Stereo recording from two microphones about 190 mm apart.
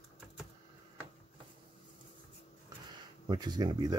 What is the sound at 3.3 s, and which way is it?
Speech, 20° right (ahead or behind).